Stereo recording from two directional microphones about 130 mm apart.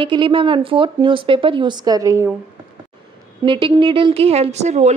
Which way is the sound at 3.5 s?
40° right (ahead or behind).